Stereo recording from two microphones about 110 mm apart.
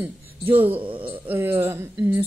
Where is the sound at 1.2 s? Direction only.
20° right (ahead or behind).